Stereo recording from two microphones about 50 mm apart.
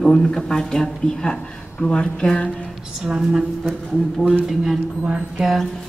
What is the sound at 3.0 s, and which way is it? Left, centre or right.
Speech, centre.